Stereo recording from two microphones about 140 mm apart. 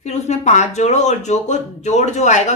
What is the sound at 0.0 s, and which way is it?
Speech, 55° left (ahead or behind).